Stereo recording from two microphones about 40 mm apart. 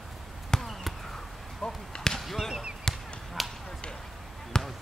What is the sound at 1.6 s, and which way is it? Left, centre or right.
Speech, centre.